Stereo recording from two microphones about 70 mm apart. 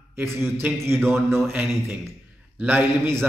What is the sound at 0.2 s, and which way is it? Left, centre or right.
Speech, right.